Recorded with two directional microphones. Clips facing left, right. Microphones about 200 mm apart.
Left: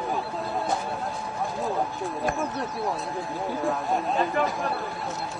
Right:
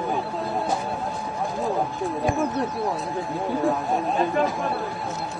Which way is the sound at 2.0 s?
Centre (ahead or behind).